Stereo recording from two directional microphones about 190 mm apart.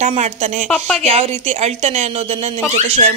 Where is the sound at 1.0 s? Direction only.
30° right (ahead or behind).